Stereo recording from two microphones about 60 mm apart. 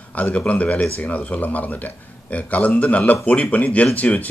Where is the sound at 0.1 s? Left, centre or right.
Left.